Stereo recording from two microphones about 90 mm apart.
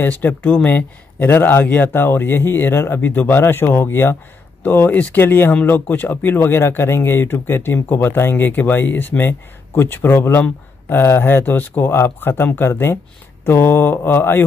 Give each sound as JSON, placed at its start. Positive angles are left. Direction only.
{"t": 0.0, "sound": "speech", "side_deg": 20}